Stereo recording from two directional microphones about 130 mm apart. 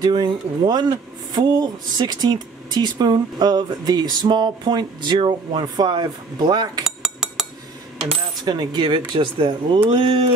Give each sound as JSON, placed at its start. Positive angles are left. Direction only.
{"t": 0.0, "sound": "speech", "side_deg": -35}
{"t": 7.0, "sound": "cutlery", "side_deg": -5}
{"t": 8.5, "sound": "speech", "side_deg": -35}